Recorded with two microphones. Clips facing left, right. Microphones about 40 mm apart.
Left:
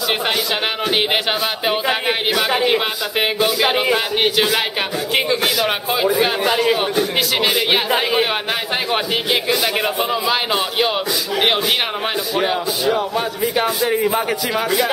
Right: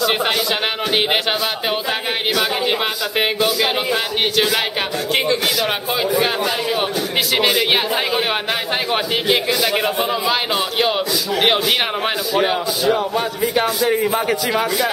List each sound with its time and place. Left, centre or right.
1.9 s a sound: centre
2.6 s a man's voice: centre
6.4 s a man's voice: centre
7.3 s a man's voice: centre
8.9 s a man's voice: centre